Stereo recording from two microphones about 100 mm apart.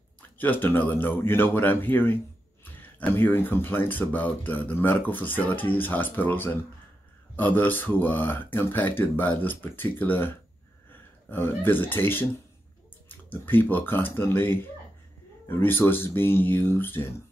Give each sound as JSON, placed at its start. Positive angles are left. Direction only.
{"t": 0.4, "sound": "speech", "side_deg": 20}
{"t": 13.3, "sound": "speech", "side_deg": 20}